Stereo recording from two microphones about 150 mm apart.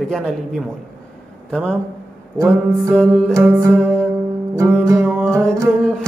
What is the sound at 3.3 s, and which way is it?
Music, 20° right (ahead or behind).